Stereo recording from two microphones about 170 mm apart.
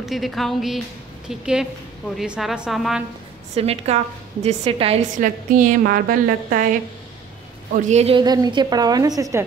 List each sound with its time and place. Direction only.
0.0 s a woman's voice: centre (ahead or behind)
3.5 s a woman's voice: 40° right (ahead or behind)
5.2 s a woman's voice: 50° right (ahead or behind)
7.7 s a woman's voice: 40° right (ahead or behind)
8.2 s a woman's voice: 25° right (ahead or behind)